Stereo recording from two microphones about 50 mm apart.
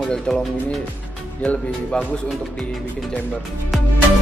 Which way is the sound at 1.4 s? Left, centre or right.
Left.